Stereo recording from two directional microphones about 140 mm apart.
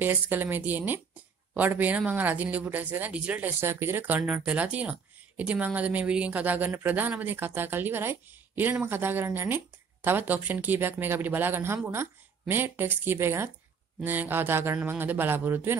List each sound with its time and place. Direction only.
0.0 s a woman's voice: 15° right (ahead or behind)